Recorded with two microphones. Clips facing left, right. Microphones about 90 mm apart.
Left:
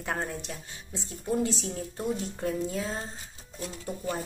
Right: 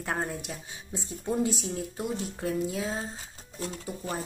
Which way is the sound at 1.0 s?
20° right (ahead or behind).